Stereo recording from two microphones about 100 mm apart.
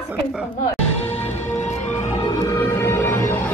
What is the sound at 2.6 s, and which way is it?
Music, 25° left (ahead or behind).